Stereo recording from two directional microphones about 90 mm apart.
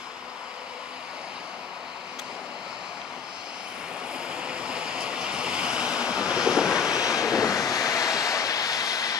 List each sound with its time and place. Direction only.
4.4 s waves: 10° right (ahead or behind)
7.2 s vehicle: 40° left (ahead or behind)